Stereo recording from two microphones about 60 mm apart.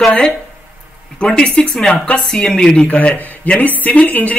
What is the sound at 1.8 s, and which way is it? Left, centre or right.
A man's voice, centre.